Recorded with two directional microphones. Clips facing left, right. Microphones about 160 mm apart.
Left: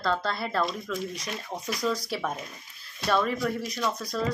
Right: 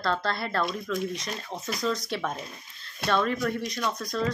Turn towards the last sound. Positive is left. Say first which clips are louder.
# even
turn(degrees=5)  # may be behind; listen again after turning